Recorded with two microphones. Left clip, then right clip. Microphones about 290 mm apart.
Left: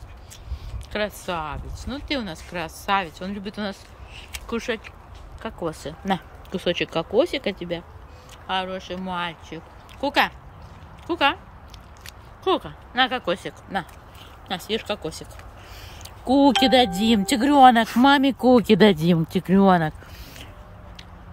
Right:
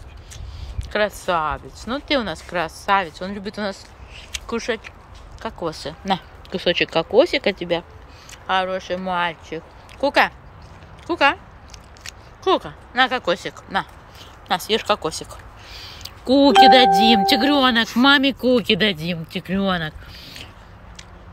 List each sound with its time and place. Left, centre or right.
0.9 s speech: centre